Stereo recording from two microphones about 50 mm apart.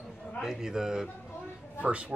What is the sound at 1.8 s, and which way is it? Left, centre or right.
Speech, right.